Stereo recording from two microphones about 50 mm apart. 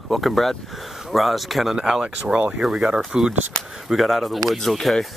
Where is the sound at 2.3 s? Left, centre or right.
Right.